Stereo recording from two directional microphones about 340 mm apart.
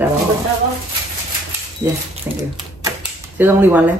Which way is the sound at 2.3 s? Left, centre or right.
Centre.